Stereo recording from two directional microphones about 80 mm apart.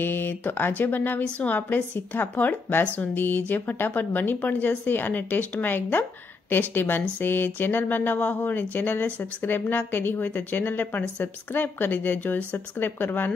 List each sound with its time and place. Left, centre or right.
0.0 s speech: left